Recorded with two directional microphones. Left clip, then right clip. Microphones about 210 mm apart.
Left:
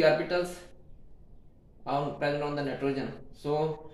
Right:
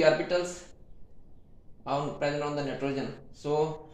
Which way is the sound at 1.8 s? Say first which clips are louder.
Even; 25° right (ahead or behind).